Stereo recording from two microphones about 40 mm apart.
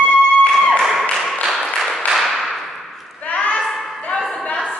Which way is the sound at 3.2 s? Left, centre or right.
Left.